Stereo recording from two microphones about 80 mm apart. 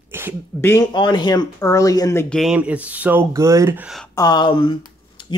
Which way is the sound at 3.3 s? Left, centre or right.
Right.